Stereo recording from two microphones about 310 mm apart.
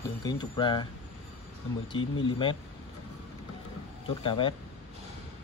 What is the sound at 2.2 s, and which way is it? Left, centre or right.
Speech, centre.